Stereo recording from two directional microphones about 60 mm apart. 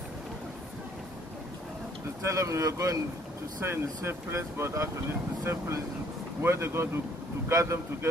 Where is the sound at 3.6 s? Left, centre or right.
Right.